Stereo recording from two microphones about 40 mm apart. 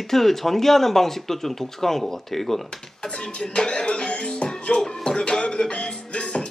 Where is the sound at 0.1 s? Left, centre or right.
Centre.